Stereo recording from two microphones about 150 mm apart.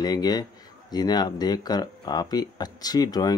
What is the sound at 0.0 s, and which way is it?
Speech, 25° left (ahead or behind).